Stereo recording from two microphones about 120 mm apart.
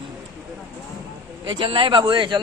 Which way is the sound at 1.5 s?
45° right (ahead or behind).